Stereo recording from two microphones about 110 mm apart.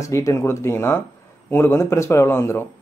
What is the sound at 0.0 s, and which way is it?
Speech, 30° left (ahead or behind).